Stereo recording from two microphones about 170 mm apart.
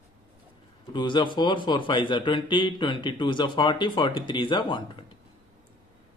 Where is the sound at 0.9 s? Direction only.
25° left (ahead or behind).